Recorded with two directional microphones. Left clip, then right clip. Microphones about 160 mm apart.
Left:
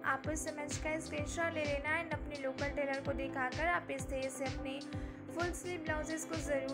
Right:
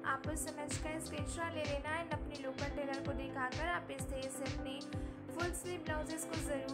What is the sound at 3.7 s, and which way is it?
Music, 10° left (ahead or behind).